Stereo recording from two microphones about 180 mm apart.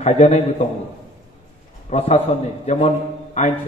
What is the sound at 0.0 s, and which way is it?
Speech, 40° left (ahead or behind).